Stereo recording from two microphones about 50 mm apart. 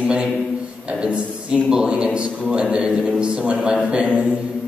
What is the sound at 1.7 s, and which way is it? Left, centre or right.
A man's voice, centre.